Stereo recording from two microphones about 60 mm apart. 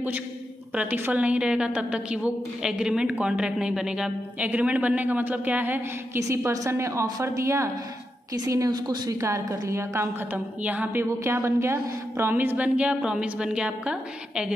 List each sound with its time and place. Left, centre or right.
0.7 s a woman's voice: right
1.2 s a woman's voice: centre
6.2 s a woman's voice: right
8.5 s a woman's voice: right
10.3 s a woman's voice: right
11.1 s a woman's voice: right
12.5 s a woman's voice: right